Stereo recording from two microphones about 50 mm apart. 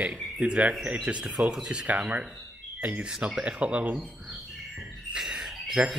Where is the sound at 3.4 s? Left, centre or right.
Right.